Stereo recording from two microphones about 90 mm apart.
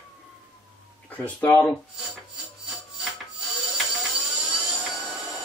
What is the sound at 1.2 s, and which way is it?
Speech, 15° left (ahead or behind).